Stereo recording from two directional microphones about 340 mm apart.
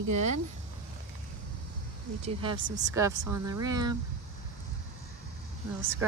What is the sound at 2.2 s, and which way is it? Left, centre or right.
Speech, centre.